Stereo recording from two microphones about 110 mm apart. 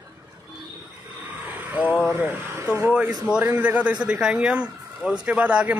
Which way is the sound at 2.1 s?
20° right (ahead or behind).